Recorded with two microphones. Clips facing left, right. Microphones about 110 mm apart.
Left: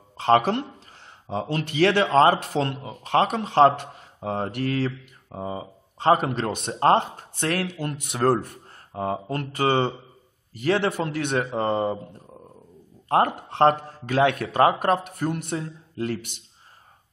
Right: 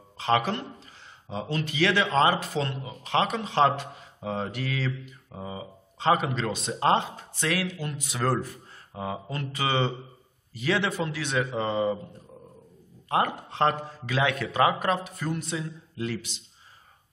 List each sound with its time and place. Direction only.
1.3 s a man's voice: 60° left (ahead or behind)
5.3 s a man's voice: 40° left (ahead or behind)
13.4 s a man's voice: 60° left (ahead or behind)